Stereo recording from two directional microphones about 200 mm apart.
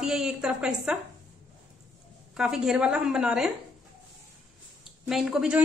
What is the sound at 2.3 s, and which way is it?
A woman's voice, 5° right (ahead or behind).